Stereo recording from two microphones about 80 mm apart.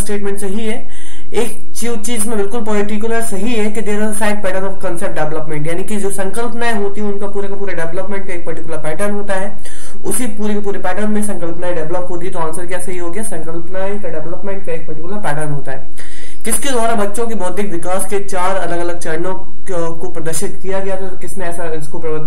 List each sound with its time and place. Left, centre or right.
0.0 s a man's voice: centre
12.3 s speech: centre
13.7 s a man's voice: centre